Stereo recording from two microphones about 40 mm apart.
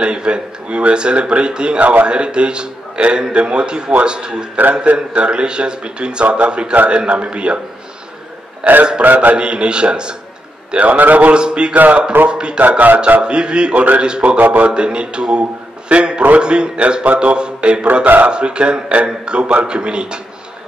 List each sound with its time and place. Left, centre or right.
0.0 s a man's voice: right
8.6 s a man's voice: right
9.4 s a man's voice: right
10.8 s a man's voice: right
11.3 s a man's voice: right
11.7 s a man's voice: right
12.3 s a man's voice: right
12.5 s speech: right
13.2 s a man's voice: right
14.4 s a man's voice: right
14.7 s a man's voice: right
18.0 s speech: right
18.3 s a man's voice: right